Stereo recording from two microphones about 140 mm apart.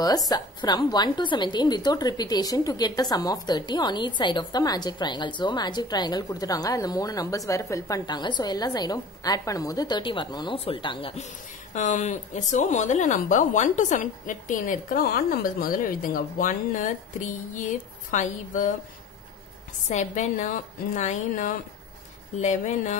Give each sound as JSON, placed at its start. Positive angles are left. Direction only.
{"t": 0.3, "sound": "a woman's voice", "side_deg": 30}
{"t": 11.7, "sound": "speech", "side_deg": 60}
{"t": 18.1, "sound": "speech", "side_deg": 60}
{"t": 19.9, "sound": "speech", "side_deg": 60}